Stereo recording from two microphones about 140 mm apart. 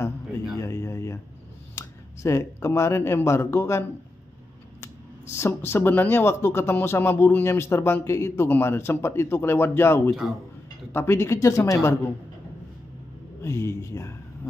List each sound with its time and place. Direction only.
0.6 s a sound: 20° left (ahead or behind)
1.8 s speech: 20° left (ahead or behind)
4.8 s a woman's voice: 20° left (ahead or behind)
13.4 s speech: 20° left (ahead or behind)